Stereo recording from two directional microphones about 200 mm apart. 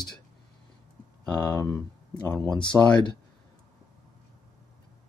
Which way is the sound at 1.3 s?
10° left (ahead or behind).